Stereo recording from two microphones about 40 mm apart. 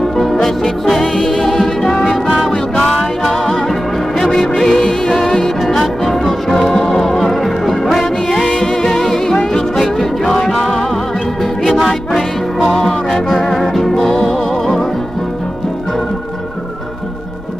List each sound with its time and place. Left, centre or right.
0.2 s music: centre
11.6 s music: centre